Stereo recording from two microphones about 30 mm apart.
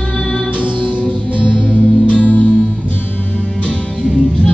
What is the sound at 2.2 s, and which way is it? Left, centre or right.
Music, left.